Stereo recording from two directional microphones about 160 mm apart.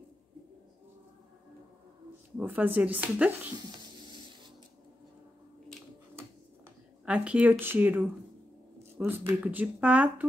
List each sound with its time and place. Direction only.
2.3 s speech: 10° right (ahead or behind)
3.5 s a sound: 30° right (ahead or behind)
7.1 s speech: 10° right (ahead or behind)